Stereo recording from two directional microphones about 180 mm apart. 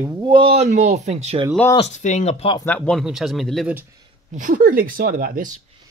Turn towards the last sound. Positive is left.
turn(degrees=-50)  # may be behind; listen again after turning